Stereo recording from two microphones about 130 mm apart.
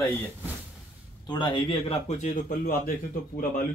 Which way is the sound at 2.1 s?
80° left.